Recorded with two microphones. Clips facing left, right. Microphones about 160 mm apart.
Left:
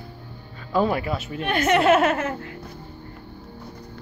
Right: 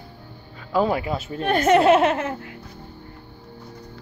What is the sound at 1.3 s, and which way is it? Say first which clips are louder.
Speech: right 4 dB; 35° right (ahead or behind).